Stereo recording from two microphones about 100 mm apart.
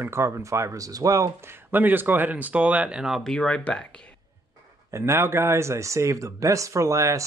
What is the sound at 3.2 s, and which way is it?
Speech, 5° left (ahead or behind).